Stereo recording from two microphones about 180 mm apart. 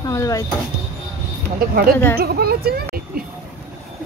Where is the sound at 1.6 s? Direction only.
55° right (ahead or behind).